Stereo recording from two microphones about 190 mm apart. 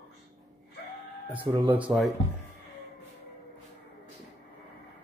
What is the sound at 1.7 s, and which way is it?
Speech, 5° right (ahead or behind).